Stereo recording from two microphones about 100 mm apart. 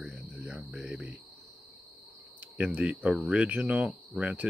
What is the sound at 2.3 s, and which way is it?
Cricket, 15° right (ahead or behind).